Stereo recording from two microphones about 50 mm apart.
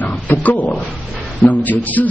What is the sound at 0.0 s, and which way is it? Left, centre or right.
A man's voice, left.